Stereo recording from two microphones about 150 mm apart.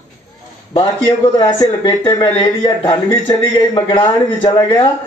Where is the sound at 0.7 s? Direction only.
30° left (ahead or behind).